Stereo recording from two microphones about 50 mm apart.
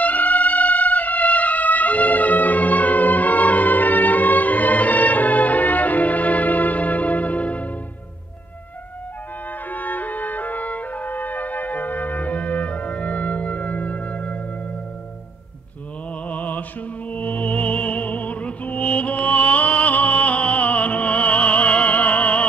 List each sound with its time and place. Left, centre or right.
0.0 s music: left
9.7 s music: left
16.3 s music: left